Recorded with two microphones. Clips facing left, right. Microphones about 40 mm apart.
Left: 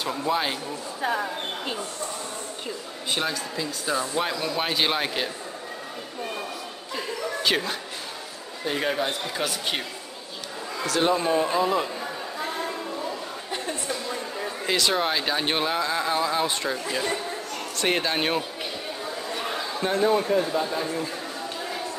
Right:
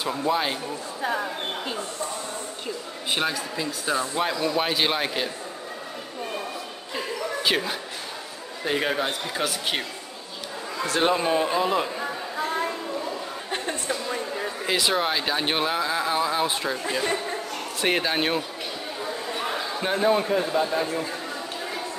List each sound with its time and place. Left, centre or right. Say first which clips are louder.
0.0 s speech: right 1 dB; centre
3.1 s speech: right 1 dB; centre
7.4 s a man's voice: even; centre
8.7 s speech: right 1 dB; centre
10.9 s a man's voice: even; right
11.4 s chatter: even; centre
13.8 s speech: right 2 dB; centre
19.0 s chatter: right 2 dB; centre
19.9 s a man's voice: even; centre